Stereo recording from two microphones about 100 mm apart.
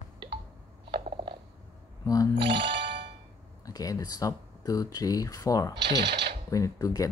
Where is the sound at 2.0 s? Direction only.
35° left (ahead or behind).